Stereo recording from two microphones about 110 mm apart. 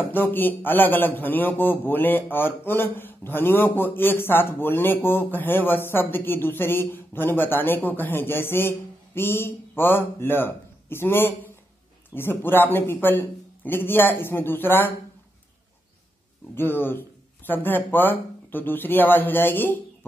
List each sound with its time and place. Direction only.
0.0 s a man's voice: 20° left (ahead or behind)
16.5 s a man's voice: 20° left (ahead or behind)